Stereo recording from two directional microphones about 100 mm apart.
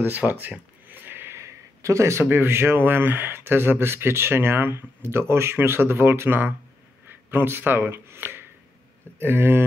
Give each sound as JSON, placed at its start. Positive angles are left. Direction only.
{"t": 0.0, "sound": "speech", "side_deg": -20}